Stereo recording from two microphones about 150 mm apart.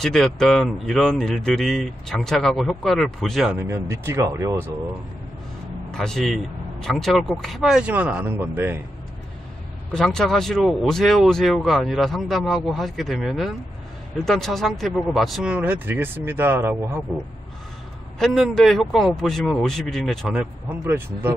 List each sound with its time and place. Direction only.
0.0 s speech: 5° left (ahead or behind)
3.5 s speech: 15° right (ahead or behind)
5.9 s speech: 5° left (ahead or behind); by 8.8 s 15° right (ahead or behind)
9.8 s speech: 5° left (ahead or behind); by 17.0 s 15° right (ahead or behind)
18.2 s speech: centre (ahead or behind)
20.8 s speech: 15° right (ahead or behind)